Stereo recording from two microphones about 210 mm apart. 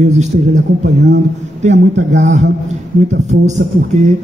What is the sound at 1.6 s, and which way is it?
Speech, 35° right (ahead or behind).